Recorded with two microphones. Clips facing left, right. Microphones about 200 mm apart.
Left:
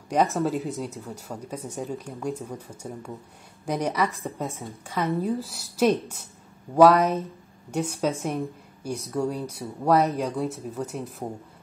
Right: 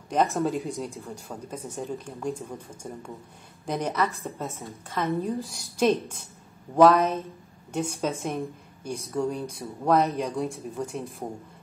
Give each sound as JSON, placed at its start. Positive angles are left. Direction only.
{"t": 0.1, "sound": "speech", "side_deg": 0}
{"t": 5.1, "sound": "speech", "side_deg": 0}